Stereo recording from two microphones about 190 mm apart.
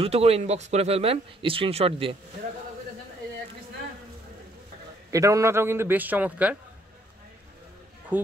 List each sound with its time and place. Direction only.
0.0 s speech: 30° right (ahead or behind)
5.1 s a man's voice: 15° right (ahead or behind)
8.1 s a man's voice: 10° right (ahead or behind)